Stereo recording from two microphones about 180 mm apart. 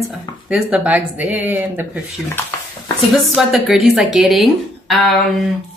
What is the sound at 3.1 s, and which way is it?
Speech, centre (ahead or behind).